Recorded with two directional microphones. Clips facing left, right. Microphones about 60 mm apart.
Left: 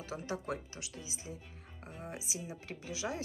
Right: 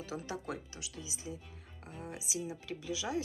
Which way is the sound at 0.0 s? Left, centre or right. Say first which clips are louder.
Left 1 dB; left.